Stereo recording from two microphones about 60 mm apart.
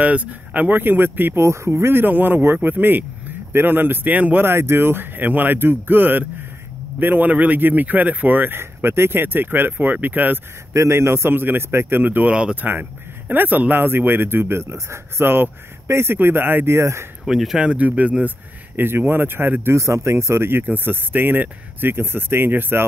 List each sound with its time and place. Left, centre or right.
0.0 s speech: right
1.4 s speech: right
4.5 s speech: right
10.7 s speech: right
12.3 s speech: centre
13.3 s speech: right
16.6 s speech: right
17.2 s speech: centre
17.6 s speech: right
18.8 s speech: right
19.7 s speech: right